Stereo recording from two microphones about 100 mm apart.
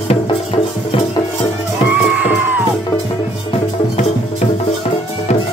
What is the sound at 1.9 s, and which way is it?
Music, 15° right (ahead or behind).